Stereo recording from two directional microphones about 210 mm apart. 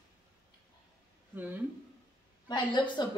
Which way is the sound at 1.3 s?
10° right (ahead or behind).